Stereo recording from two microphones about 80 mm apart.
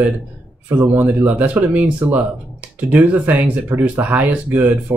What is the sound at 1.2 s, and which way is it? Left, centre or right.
Speech, right.